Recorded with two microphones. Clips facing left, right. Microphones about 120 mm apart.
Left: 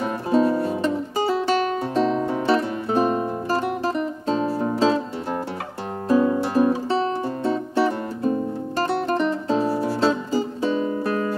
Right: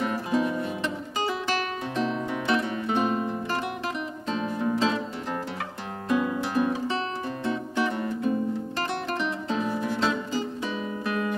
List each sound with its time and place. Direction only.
0.0 s music: 35° left (ahead or behind)